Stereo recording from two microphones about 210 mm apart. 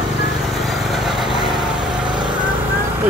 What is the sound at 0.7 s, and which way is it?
Vehicle, centre (ahead or behind).